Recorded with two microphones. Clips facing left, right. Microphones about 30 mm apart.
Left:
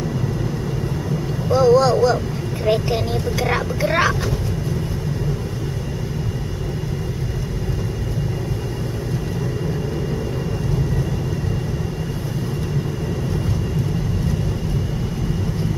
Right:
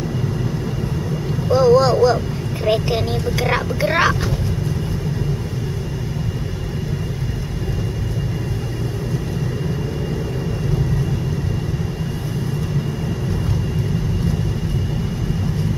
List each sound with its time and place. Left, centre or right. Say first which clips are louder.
1.5 s vehicle: right 1 dB; centre
1.8 s speech: right 1 dB; centre